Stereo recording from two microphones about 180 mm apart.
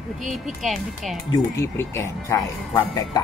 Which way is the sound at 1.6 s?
15° left (ahead or behind).